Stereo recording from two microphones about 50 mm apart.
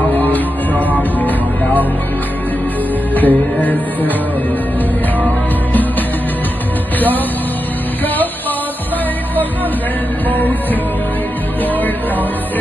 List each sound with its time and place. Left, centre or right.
0.1 s music: left
3.2 s music: left
10.3 s music: left